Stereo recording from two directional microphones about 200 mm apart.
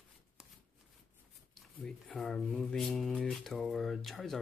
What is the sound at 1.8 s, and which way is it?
Speech, centre (ahead or behind).